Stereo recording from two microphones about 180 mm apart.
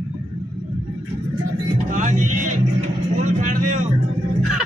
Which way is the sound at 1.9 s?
45° right (ahead or behind).